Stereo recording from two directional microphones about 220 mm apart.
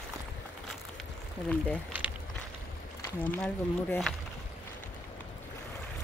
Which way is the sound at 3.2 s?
10° left (ahead or behind).